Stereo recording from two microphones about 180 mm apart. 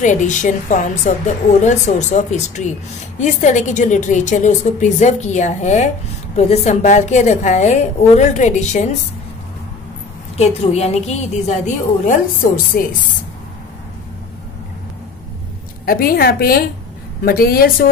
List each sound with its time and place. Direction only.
0.0 s a woman's voice: 45° left (ahead or behind)
10.3 s a woman's voice: 35° left (ahead or behind)
12.7 s a woman's voice: 55° left (ahead or behind)
15.8 s a woman's voice: 55° left (ahead or behind)